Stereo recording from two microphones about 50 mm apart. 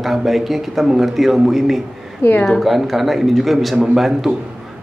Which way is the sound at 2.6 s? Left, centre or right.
Centre.